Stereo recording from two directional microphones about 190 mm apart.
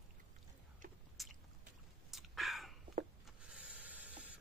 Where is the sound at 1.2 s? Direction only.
Centre (ahead or behind).